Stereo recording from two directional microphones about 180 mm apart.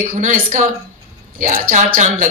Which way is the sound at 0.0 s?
50° right (ahead or behind).